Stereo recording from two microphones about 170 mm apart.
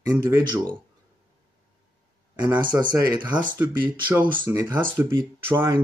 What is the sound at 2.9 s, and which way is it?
Speech, 25° right (ahead or behind).